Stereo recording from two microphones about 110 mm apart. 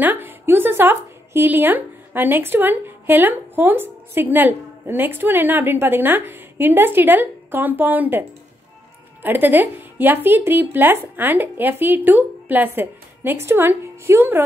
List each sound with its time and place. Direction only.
0.0 s speech: 20° right (ahead or behind)